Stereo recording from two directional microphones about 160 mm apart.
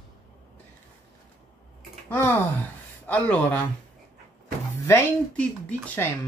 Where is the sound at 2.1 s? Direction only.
15° left (ahead or behind).